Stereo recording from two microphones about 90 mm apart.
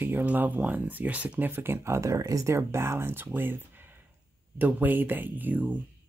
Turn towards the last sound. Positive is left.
turn(degrees=-15)  # may be behind; listen again after turning